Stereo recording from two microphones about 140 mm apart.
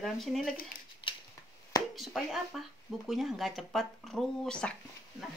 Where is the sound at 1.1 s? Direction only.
35° left (ahead or behind).